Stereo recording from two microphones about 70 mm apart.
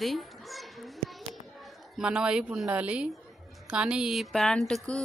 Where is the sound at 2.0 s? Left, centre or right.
Centre.